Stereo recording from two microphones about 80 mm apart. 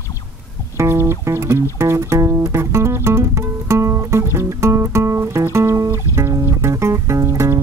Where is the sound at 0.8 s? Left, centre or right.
Right.